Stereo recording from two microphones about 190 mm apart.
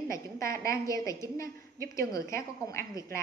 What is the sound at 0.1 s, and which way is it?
A woman's voice, 15° left (ahead or behind).